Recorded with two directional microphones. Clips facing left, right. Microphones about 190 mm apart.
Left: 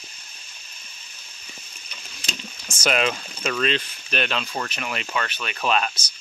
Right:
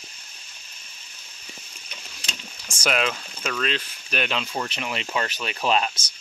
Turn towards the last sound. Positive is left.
turn(degrees=-25)  # may be behind; listen again after turning